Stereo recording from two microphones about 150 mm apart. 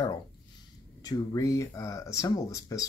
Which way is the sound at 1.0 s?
25° left (ahead or behind).